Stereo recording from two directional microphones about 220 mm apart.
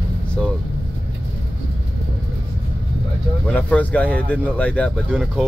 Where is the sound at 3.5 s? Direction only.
5° left (ahead or behind).